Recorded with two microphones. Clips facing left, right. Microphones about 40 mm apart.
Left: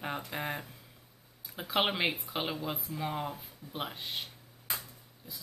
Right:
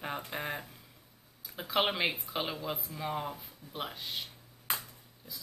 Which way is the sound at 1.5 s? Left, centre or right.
Centre.